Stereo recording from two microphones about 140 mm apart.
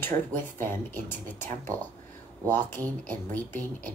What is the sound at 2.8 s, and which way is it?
Speech, 15° left (ahead or behind).